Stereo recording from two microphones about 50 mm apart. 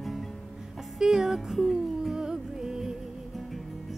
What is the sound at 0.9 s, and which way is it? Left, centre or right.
Music, centre.